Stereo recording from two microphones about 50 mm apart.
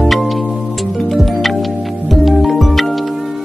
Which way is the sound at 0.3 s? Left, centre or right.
Centre.